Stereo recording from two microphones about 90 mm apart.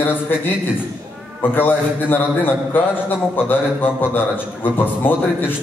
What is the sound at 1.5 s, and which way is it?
A man's voice, 20° left (ahead or behind).